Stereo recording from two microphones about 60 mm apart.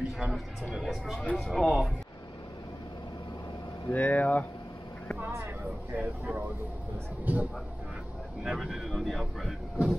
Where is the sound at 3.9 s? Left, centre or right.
Left.